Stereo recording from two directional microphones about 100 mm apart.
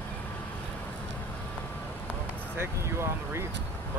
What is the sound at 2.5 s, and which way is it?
Vehicle, 25° right (ahead or behind).